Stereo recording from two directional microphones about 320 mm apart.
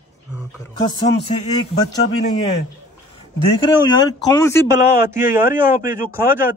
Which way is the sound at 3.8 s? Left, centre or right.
Centre.